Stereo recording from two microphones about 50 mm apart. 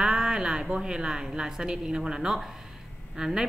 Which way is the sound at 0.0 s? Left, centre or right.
Centre.